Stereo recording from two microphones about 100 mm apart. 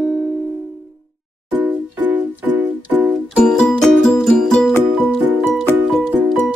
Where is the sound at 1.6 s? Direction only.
15° right (ahead or behind).